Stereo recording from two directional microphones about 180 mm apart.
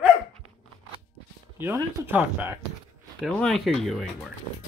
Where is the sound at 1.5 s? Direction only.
10° right (ahead or behind).